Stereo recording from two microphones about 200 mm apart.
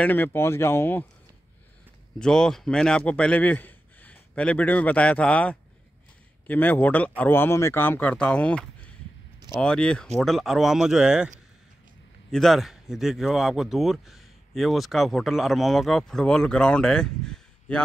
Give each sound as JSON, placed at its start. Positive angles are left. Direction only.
{"t": 0.0, "sound": "speech", "side_deg": 10}
{"t": 2.1, "sound": "speech", "side_deg": 5}